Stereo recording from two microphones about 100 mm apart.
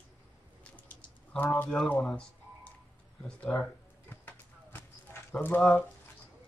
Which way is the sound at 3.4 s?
15° left (ahead or behind).